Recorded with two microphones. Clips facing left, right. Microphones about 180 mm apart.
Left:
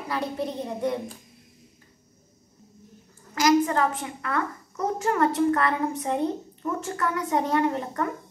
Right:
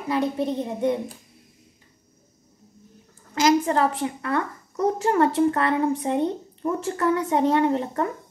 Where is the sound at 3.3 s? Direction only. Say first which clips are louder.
Right 1 dB; 30° right (ahead or behind).